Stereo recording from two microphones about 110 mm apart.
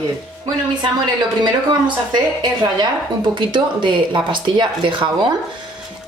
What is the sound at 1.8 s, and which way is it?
A woman's voice, 40° right (ahead or behind).